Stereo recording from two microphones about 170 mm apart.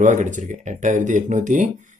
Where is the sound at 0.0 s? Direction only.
45° right (ahead or behind).